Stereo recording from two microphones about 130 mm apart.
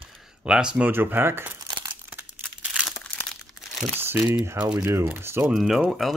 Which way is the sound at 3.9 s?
15° right (ahead or behind).